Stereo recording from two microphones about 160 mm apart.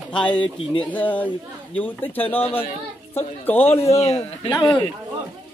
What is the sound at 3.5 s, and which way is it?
Speech, 10° left (ahead or behind).